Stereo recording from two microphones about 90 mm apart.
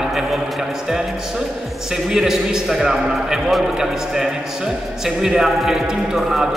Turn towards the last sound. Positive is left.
turn(degrees=-5)  # may be behind; listen again after turning